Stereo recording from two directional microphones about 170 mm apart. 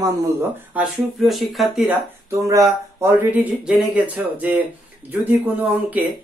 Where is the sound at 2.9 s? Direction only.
15° right (ahead or behind).